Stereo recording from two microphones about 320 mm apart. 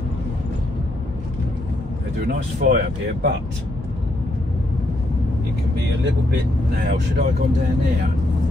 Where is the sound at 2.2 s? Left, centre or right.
Right.